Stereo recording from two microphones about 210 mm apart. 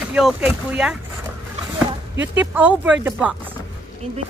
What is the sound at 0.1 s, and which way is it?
Speech, 5° right (ahead or behind).